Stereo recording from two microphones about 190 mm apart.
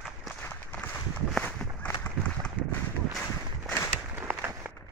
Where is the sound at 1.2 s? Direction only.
5° left (ahead or behind).